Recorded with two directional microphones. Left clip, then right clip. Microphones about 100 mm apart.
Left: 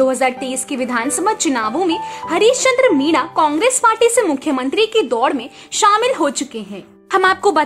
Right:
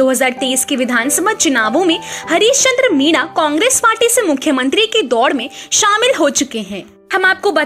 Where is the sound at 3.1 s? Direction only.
30° right (ahead or behind).